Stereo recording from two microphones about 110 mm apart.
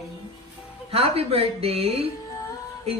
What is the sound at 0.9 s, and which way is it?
A woman's voice, 65° right (ahead or behind).